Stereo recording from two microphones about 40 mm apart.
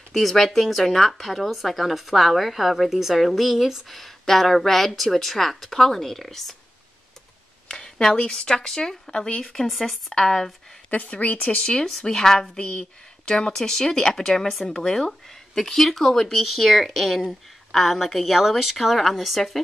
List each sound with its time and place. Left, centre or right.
0.1 s speech: centre
7.6 s speech: left
10.9 s speech: left
12.0 s a woman's voice: centre